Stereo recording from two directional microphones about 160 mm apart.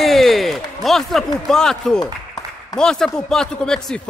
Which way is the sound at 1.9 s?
25° left (ahead or behind).